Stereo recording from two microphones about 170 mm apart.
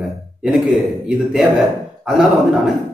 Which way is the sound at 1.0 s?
Centre (ahead or behind).